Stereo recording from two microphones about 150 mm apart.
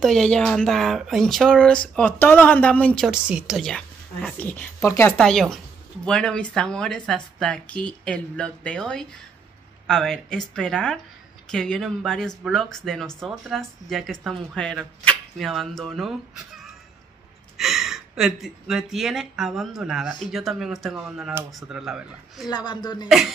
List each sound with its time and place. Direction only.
0.0 s speech: 5° left (ahead or behind)
3.1 s a woman's voice: 5° right (ahead or behind); by 5.1 s 15° left (ahead or behind)
5.1 s speech: 5° left (ahead or behind)
17.6 s speech: centre (ahead or behind)
22.5 s speech: 30° left (ahead or behind)